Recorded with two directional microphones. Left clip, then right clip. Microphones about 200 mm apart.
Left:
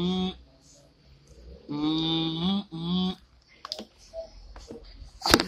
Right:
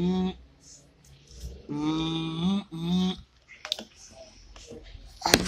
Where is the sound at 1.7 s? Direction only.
Centre (ahead or behind).